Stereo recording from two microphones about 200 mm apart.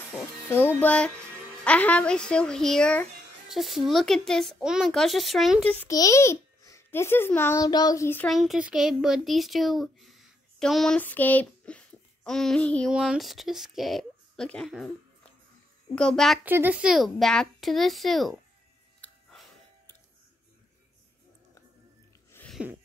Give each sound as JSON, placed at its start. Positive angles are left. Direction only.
{"t": 0.5, "sound": "music", "side_deg": 10}
{"t": 1.6, "sound": "a woman's voice", "side_deg": 5}
{"t": 5.9, "sound": "a child's voice", "side_deg": 15}
{"t": 8.3, "sound": "a child's voice", "side_deg": 0}
{"t": 15.9, "sound": "a woman's voice", "side_deg": 5}
{"t": 16.4, "sound": "a woman's voice", "side_deg": -10}
{"t": 19.0, "sound": "music", "side_deg": 5}
{"t": 22.3, "sound": "a sound", "side_deg": 10}